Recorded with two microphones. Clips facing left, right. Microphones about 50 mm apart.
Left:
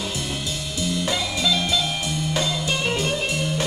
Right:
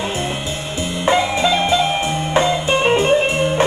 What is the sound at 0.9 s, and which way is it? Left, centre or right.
Music, right.